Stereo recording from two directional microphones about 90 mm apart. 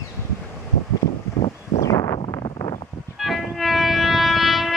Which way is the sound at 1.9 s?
50° left (ahead or behind).